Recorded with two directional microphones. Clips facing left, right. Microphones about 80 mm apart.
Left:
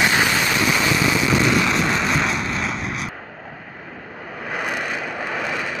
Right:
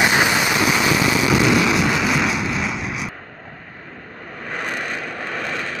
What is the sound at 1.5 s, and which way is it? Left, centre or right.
Vehicle, centre.